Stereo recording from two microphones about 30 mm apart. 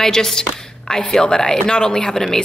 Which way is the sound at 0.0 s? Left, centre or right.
Centre.